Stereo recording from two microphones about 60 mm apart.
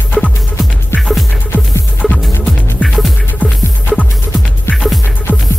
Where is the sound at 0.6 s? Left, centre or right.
Centre.